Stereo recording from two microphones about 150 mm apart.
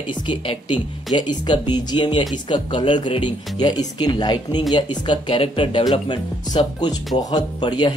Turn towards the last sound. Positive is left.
turn(degrees=30)  # may be behind; listen again after turning